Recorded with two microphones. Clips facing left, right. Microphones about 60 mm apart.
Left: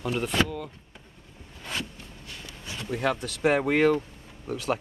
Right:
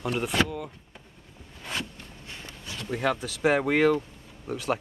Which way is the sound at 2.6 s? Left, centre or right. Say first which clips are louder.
Left 1 dB; centre.